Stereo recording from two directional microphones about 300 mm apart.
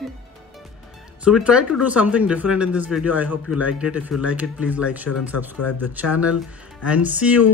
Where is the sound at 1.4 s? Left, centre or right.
Centre.